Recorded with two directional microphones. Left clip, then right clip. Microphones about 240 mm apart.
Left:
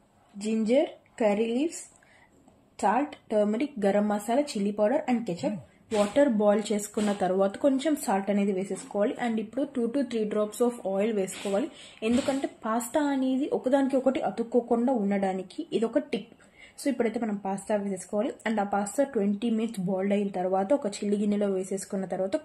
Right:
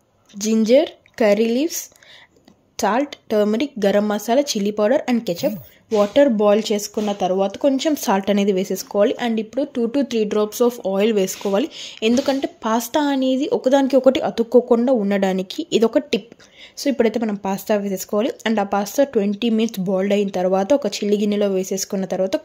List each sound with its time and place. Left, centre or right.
0.4 s speech: right
2.8 s speech: right
7.2 s speech: right